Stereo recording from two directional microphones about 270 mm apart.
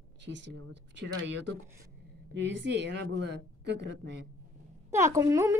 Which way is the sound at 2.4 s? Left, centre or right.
Right.